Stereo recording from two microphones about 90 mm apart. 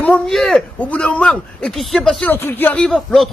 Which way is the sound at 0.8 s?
15° left (ahead or behind).